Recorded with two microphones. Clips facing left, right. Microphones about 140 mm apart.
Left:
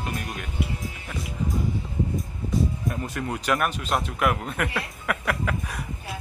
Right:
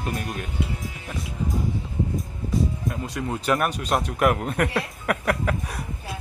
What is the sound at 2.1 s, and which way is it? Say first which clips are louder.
Music: right 1 dB; centre (ahead or behind).